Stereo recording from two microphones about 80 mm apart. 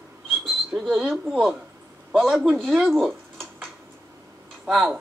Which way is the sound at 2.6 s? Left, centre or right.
Centre.